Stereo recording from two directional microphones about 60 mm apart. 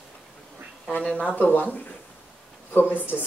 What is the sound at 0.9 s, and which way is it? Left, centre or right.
Speech, left.